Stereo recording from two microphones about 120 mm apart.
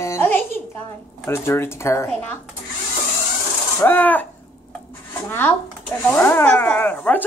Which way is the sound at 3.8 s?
15° left (ahead or behind).